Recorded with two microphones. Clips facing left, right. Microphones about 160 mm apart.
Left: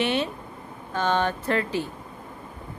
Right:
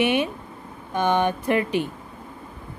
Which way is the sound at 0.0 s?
15° right (ahead or behind).